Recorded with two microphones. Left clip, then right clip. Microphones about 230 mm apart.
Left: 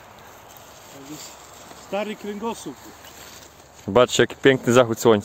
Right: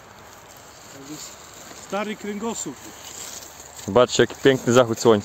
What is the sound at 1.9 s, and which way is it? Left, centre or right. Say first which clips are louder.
Speech: even; right.